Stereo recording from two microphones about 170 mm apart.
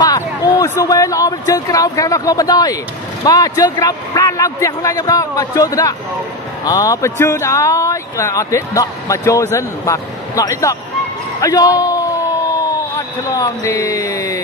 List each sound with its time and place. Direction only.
0.0 s a man's voice: 20° left (ahead or behind)